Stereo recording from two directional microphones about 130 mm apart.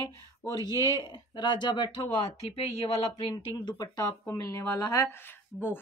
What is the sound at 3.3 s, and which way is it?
Speech, 30° left (ahead or behind).